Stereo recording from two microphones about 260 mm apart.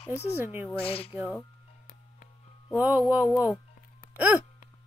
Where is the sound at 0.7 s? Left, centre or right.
Left.